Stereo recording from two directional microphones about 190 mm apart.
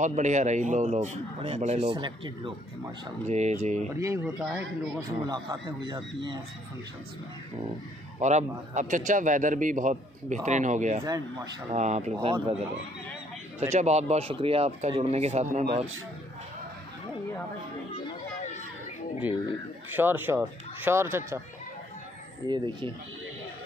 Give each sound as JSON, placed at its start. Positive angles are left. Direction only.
{"t": 0.0, "sound": "a man's voice", "side_deg": -40}
{"t": 3.3, "sound": "a man's voice", "side_deg": -35}
{"t": 3.9, "sound": "speech", "side_deg": -15}
{"t": 5.2, "sound": "speech", "side_deg": -20}
{"t": 8.2, "sound": "a man's voice", "side_deg": -40}
{"t": 11.1, "sound": "speech", "side_deg": -20}
{"t": 11.7, "sound": "a man's voice", "side_deg": -35}
{"t": 20.0, "sound": "speech", "side_deg": -10}
{"t": 22.5, "sound": "speech", "side_deg": -25}